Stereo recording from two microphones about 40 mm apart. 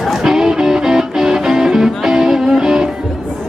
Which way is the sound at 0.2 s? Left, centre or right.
Centre.